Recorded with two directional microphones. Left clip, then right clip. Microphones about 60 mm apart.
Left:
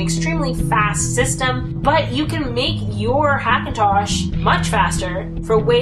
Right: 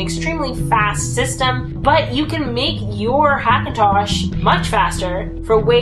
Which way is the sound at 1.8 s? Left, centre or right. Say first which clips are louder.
Right 2 dB; centre.